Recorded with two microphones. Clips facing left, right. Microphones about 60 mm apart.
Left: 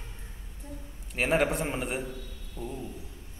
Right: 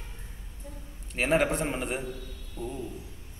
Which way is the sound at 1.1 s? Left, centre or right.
Centre.